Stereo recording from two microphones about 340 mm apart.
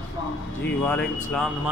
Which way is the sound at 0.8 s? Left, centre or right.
Centre.